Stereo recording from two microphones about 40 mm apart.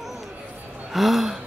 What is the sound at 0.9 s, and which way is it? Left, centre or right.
Speech, centre.